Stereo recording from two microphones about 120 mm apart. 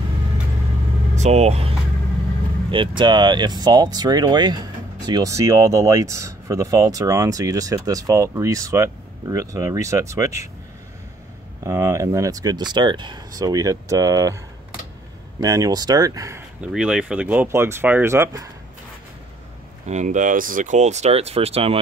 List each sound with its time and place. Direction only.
1.1 s speech: 65° right (ahead or behind)
2.7 s speech: 45° right (ahead or behind); by 10.5 s 25° right (ahead or behind)
11.6 s speech: 25° right (ahead or behind)
15.4 s speech: 30° right (ahead or behind)
16.6 s speech: 5° right (ahead or behind); by 18.5 s 25° right (ahead or behind)
19.9 s speech: 85° right; by 21.7 s 55° right (ahead or behind)